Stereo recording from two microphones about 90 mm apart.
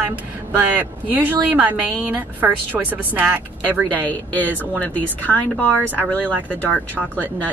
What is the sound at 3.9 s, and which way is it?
Speech, 15° left (ahead or behind).